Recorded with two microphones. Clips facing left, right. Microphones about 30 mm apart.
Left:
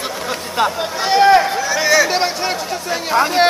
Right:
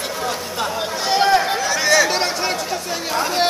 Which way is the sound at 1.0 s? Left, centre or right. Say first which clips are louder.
Left 5 dB; centre.